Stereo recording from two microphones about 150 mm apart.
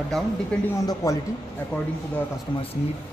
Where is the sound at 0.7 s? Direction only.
20° left (ahead or behind).